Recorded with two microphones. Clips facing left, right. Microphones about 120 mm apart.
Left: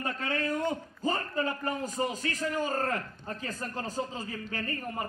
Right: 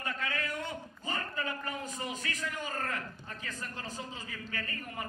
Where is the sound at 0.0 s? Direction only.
35° left (ahead or behind).